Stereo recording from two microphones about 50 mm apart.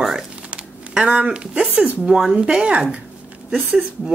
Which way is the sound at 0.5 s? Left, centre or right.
Centre.